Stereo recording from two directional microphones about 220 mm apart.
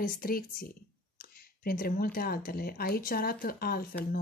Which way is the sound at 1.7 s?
40° left (ahead or behind).